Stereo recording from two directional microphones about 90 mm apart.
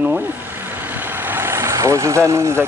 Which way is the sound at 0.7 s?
20° right (ahead or behind).